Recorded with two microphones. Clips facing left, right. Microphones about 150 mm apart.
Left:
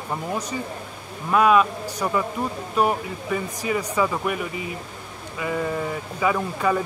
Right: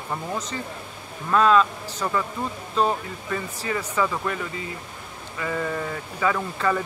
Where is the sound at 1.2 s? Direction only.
10° left (ahead or behind).